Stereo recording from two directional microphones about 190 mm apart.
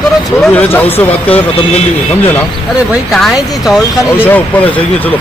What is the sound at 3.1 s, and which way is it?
Speech, centre (ahead or behind).